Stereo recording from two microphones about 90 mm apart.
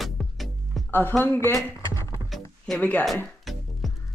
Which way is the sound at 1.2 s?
25° left (ahead or behind).